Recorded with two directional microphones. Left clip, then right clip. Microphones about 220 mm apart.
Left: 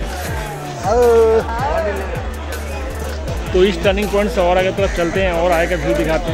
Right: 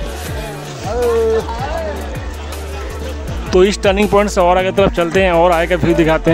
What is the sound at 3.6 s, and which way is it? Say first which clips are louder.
Speech: right 3 dB; 35° right (ahead or behind).